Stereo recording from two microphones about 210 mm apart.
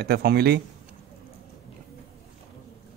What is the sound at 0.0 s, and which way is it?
Speech, 50° right (ahead or behind).